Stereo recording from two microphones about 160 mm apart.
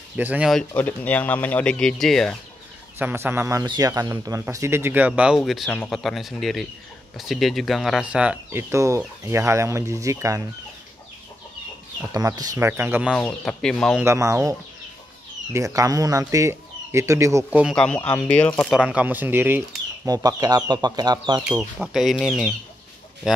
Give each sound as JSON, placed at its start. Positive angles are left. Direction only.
{"t": 0.2, "sound": "speech", "side_deg": -10}
{"t": 0.5, "sound": "speech", "side_deg": 5}
{"t": 3.0, "sound": "speech", "side_deg": -15}
{"t": 12.1, "sound": "speech", "side_deg": -20}
{"t": 13.1, "sound": "speech", "side_deg": 5}
{"t": 14.0, "sound": "speech", "side_deg": -20}
{"t": 15.5, "sound": "speech", "side_deg": -20}
{"t": 17.5, "sound": "speech", "side_deg": -10}
{"t": 17.7, "sound": "speech", "side_deg": 5}
{"t": 18.7, "sound": "speech", "side_deg": -5}
{"t": 21.7, "sound": "speech", "side_deg": 0}